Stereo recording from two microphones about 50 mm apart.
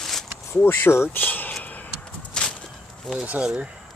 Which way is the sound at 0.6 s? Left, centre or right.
Left.